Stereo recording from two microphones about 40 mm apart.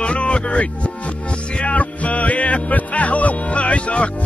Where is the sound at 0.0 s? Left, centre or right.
Left.